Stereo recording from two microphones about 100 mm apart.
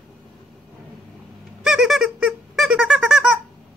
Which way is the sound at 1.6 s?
5° right (ahead or behind).